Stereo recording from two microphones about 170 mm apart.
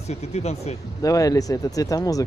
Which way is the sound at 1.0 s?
20° left (ahead or behind).